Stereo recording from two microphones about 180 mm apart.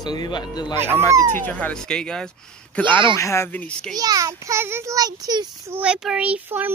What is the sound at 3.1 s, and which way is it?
Speech, 15° left (ahead or behind).